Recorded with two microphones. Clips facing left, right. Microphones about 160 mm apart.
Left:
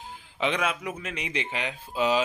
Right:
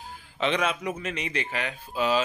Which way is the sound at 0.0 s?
15° left (ahead or behind).